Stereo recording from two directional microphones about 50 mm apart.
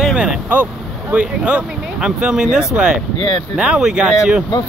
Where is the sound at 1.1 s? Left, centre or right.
Right.